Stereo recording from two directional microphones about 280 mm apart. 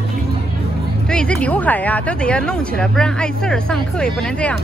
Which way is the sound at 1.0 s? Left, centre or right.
Centre.